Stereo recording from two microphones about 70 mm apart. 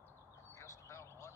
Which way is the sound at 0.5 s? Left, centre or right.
Left.